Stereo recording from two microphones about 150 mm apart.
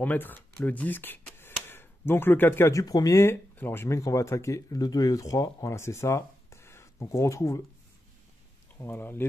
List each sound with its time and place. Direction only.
0.0 s speech: 10° left (ahead or behind)
8.7 s speech: 15° left (ahead or behind)